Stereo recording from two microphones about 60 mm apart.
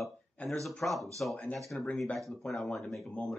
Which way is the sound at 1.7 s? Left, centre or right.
Left.